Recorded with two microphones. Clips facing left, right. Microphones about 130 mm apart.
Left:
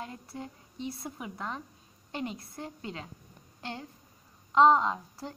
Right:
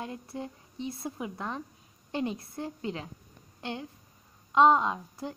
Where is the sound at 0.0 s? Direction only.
25° right (ahead or behind).